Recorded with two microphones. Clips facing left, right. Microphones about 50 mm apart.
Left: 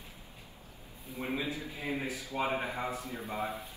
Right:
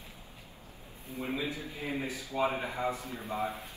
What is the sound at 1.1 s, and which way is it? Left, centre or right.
Speech, right.